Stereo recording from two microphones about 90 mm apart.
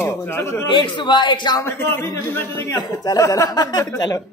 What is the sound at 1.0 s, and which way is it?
Speech, 55° left (ahead or behind).